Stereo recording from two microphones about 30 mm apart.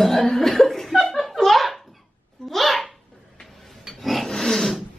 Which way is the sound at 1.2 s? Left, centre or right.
Centre.